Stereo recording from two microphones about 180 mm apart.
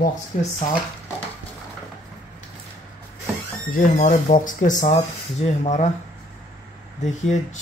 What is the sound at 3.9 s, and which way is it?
Speech, 45° left (ahead or behind).